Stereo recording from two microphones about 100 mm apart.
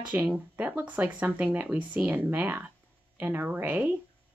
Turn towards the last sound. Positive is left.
turn(degrees=-20)  # may be behind; listen again after turning